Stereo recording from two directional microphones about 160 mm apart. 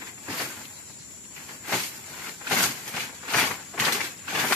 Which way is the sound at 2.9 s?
5° left (ahead or behind).